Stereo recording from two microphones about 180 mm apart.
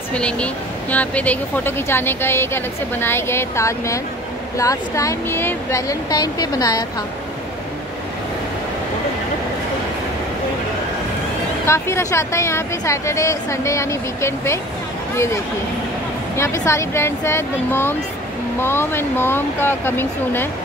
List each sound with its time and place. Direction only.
0.1 s speech: 5° left (ahead or behind)
11.6 s speech: 15° left (ahead or behind)
16.3 s speech: 15° left (ahead or behind)